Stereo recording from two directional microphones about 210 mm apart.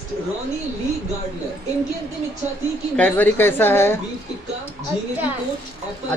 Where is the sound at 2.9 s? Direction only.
5° left (ahead or behind).